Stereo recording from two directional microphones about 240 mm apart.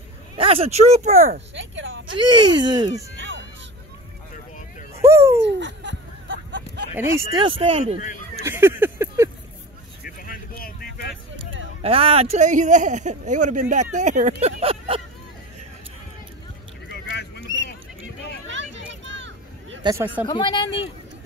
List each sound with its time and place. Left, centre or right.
0.4 s speech: right
1.5 s speech: right
2.1 s speech: centre
5.0 s speech: centre
5.5 s a sound: right
7.0 s speech: centre
8.5 s a sound: centre
10.0 s vehicle: left
11.8 s speech: right
16.9 s a sound: left
18.5 s a sound: right
19.8 s speech: centre
20.2 s speech: centre